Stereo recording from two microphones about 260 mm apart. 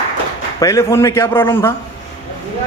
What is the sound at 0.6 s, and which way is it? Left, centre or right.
Speech, centre.